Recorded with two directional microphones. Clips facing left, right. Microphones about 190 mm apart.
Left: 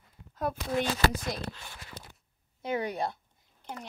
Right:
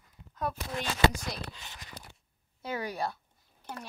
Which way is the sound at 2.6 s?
20° left (ahead or behind).